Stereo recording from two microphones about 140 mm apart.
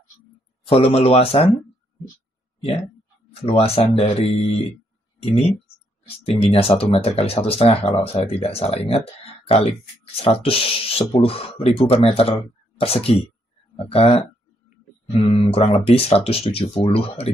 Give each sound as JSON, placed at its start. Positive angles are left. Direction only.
{"t": 0.7, "sound": "speech", "side_deg": 45}
{"t": 3.3, "sound": "speech", "side_deg": 45}
{"t": 15.0, "sound": "speech", "side_deg": 40}